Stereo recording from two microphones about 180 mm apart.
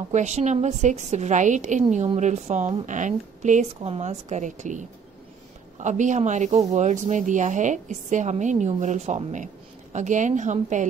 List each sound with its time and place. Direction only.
0.1 s a woman's voice: 40° right (ahead or behind)